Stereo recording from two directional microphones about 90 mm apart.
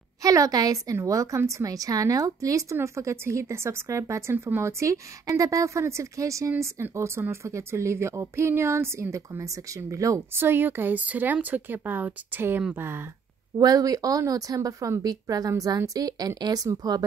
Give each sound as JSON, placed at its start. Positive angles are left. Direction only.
{"t": 0.2, "sound": "a woman's voice", "side_deg": -40}
{"t": 10.3, "sound": "speech", "side_deg": -25}
{"t": 13.6, "sound": "speech", "side_deg": -45}